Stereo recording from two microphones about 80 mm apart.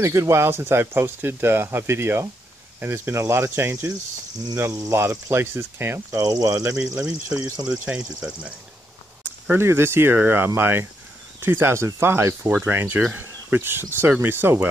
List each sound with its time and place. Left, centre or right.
0.0 s speech: right
6.1 s speech: right
7.7 s speech: centre
9.5 s speech: right